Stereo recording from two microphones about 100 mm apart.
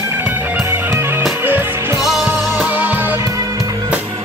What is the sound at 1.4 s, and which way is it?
Music, 20° right (ahead or behind).